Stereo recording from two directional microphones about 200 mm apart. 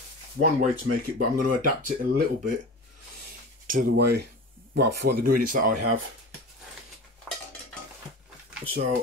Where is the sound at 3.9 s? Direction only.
55° right (ahead or behind).